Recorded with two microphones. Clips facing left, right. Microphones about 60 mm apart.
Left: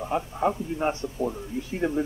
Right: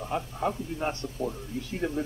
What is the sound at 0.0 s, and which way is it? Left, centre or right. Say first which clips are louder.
A man's voice: left 4 dB; centre.